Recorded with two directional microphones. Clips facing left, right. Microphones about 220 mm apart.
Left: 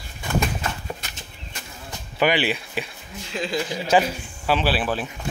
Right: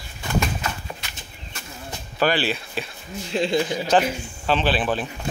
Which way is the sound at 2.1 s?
15° left (ahead or behind).